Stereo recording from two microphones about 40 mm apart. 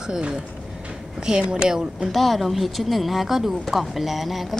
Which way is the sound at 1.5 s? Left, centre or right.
Centre.